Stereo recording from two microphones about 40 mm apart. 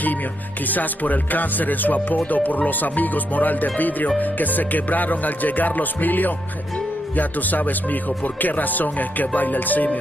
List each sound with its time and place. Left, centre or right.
0.7 s speech: left